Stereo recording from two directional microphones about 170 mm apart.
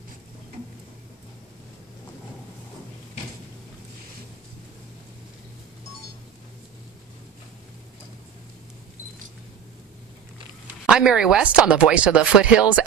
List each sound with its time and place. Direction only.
10.9 s speech: 5° right (ahead or behind)